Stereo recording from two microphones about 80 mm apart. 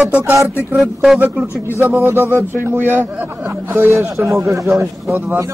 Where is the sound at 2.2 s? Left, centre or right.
Right.